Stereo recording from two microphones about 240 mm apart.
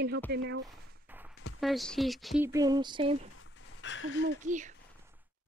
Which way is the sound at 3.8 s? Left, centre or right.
Left.